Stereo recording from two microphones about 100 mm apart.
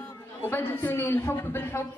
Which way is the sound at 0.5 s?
20° left (ahead or behind).